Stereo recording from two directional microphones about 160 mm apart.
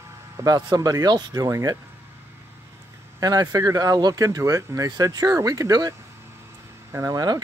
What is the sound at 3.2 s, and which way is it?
Speech, 25° right (ahead or behind).